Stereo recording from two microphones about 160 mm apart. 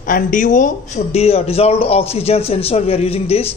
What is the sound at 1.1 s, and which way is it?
A man's voice, 40° left (ahead or behind).